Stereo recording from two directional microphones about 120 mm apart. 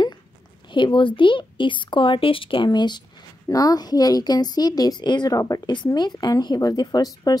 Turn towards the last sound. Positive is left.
turn(degrees=30)  # may be behind; listen again after turning